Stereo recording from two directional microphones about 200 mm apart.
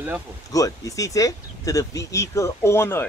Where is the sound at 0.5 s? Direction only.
15° left (ahead or behind).